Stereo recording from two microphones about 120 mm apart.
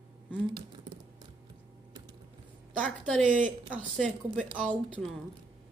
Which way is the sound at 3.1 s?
5° left (ahead or behind).